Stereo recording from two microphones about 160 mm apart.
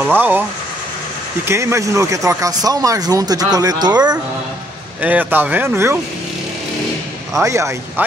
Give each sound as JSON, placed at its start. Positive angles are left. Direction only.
{"t": 0.0, "sound": "speech", "side_deg": -10}
{"t": 1.5, "sound": "speech", "side_deg": -15}
{"t": 5.0, "sound": "speech", "side_deg": -10}
{"t": 7.4, "sound": "speech", "side_deg": -20}